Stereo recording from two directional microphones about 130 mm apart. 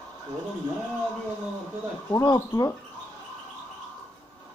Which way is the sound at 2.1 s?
30° left (ahead or behind).